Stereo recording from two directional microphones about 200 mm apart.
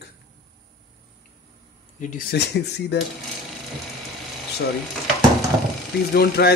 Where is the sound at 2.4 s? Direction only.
55° left (ahead or behind).